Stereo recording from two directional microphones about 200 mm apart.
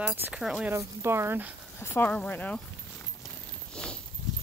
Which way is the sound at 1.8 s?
10° left (ahead or behind).